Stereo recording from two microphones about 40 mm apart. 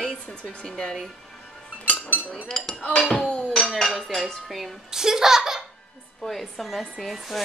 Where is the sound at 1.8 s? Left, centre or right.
Left.